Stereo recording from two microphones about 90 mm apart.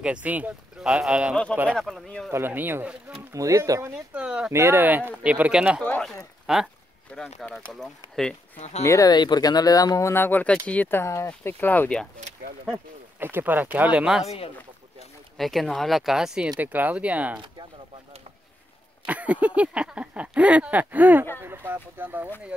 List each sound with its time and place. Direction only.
0.0 s speech: 15° right (ahead or behind)
1.3 s speech: 5° left (ahead or behind)
2.3 s speech: 25° right (ahead or behind)
3.3 s speech: 35° right (ahead or behind)
3.9 s speech: 15° right (ahead or behind)
4.5 s speech: 30° right (ahead or behind); by 8.4 s 5° left (ahead or behind)
8.8 s speech: 35° left (ahead or behind)
9.1 s speech: 50° left (ahead or behind)
10.1 s speech: 20° left (ahead or behind)
13.2 s speech: 25° right (ahead or behind)
15.3 s speech: centre (ahead or behind)
16.5 s speech: 20° right (ahead or behind)
19.0 s speech: 15° right (ahead or behind)